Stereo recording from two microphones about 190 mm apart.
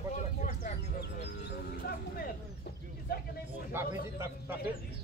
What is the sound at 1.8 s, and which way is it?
Speech, 50° left (ahead or behind).